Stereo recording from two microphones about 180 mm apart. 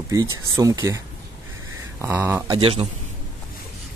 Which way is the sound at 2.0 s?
10° right (ahead or behind).